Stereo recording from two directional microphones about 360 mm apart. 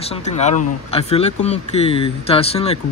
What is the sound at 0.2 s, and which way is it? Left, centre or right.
Speech, centre.